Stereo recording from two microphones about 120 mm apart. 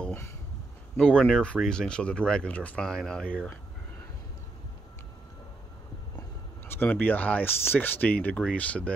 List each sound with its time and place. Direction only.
0.0 s a sound: 15° left (ahead or behind)
0.9 s speech: 10° left (ahead or behind)
6.7 s speech: 15° left (ahead or behind)